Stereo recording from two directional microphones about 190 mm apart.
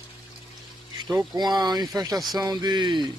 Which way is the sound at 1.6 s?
20° right (ahead or behind).